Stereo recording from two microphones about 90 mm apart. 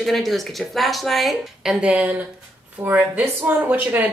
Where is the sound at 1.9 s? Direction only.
15° right (ahead or behind).